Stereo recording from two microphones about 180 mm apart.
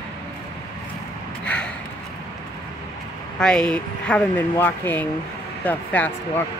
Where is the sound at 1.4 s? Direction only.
5° left (ahead or behind).